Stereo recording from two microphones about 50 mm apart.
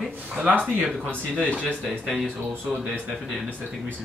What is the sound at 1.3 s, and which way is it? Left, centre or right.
Speech, left.